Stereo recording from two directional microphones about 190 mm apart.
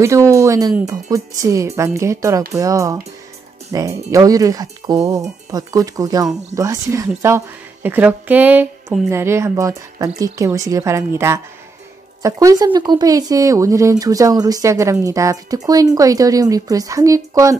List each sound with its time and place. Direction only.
0.0 s a woman's voice: 15° right (ahead or behind)